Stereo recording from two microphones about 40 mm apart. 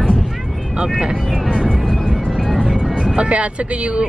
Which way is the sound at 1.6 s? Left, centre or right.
Centre.